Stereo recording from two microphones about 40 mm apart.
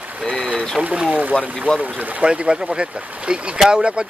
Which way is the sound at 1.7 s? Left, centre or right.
Right.